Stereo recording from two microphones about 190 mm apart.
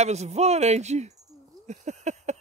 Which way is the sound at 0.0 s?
35° right (ahead or behind).